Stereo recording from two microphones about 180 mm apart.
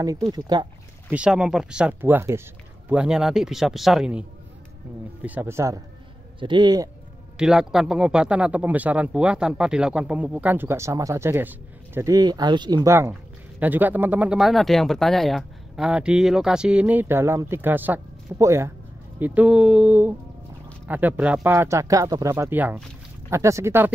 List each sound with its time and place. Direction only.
0.0 s speech: 20° right (ahead or behind)
1.1 s a man's voice: 5° right (ahead or behind)
6.4 s speech: 25° right (ahead or behind)
7.3 s speech: 5° right (ahead or behind)